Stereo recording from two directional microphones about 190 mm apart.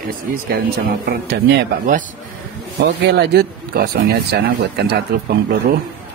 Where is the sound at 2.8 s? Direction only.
65° right (ahead or behind).